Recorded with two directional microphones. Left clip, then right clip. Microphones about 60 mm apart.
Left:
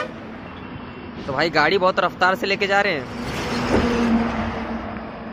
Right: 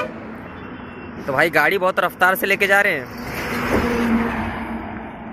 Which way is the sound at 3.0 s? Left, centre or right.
Centre.